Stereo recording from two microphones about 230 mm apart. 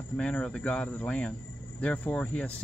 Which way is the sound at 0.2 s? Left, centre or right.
Centre.